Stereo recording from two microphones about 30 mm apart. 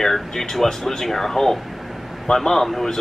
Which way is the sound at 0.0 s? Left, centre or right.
Centre.